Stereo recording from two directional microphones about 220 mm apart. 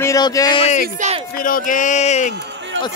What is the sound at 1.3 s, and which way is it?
Speech, 40° left (ahead or behind).